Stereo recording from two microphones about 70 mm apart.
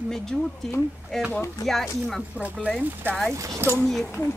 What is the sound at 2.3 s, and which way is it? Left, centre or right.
Speech, centre.